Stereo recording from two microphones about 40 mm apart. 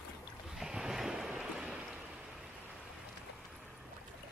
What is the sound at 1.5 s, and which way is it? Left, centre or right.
Boat, right.